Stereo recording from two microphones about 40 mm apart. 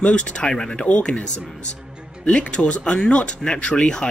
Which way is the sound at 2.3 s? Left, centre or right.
Left.